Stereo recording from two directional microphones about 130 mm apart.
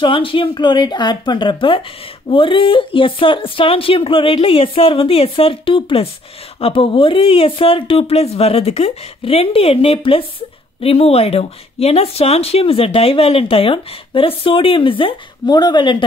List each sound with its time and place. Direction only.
0.0 s speech: 40° left (ahead or behind)